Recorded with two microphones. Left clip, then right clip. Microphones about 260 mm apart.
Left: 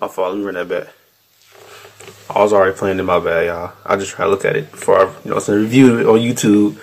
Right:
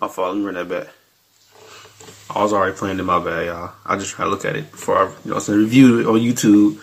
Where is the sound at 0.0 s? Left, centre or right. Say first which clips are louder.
Left 2 dB; centre.